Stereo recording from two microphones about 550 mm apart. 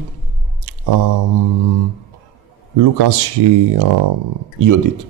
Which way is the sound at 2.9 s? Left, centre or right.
Right.